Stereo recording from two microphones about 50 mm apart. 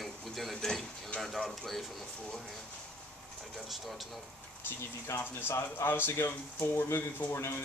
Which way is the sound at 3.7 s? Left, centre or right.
Centre.